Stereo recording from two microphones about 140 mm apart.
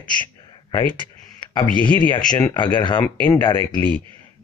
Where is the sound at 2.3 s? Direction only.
30° left (ahead or behind).